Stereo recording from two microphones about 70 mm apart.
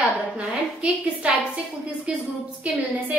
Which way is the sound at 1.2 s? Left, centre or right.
Centre.